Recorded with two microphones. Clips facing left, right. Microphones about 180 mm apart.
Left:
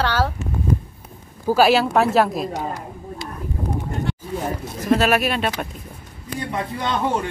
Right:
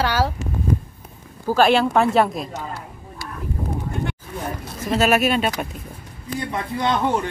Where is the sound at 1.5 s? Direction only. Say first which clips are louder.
Left 1 dB; 5° left (ahead or behind).